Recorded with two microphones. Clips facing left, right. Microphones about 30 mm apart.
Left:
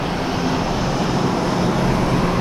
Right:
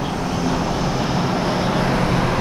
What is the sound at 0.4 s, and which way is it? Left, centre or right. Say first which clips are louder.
Vehicle: right 1 dB; centre.